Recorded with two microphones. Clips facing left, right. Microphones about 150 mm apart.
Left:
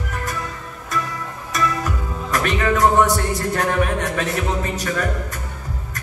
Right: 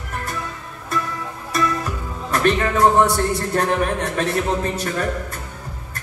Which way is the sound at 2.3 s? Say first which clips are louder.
Right 2 dB; 30° right (ahead or behind).